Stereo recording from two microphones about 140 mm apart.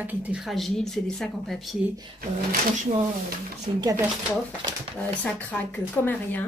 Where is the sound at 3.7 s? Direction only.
45° right (ahead or behind).